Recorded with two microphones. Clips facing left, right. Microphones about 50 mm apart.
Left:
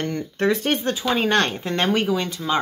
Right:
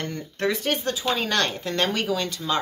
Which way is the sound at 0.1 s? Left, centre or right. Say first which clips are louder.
Left 5 dB; left.